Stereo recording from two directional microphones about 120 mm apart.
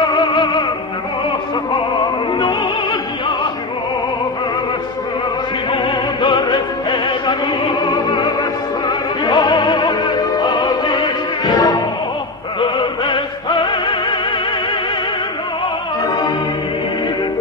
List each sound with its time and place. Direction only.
0.0 s music: 40° left (ahead or behind)
2.3 s opera: 40° left (ahead or behind)
5.7 s music: 40° left (ahead or behind)
8.1 s opera: 40° left (ahead or behind)
11.4 s music: 35° left (ahead or behind)